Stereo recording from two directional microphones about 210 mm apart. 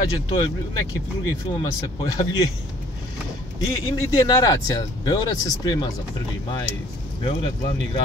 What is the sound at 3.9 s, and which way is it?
Speech, 20° left (ahead or behind).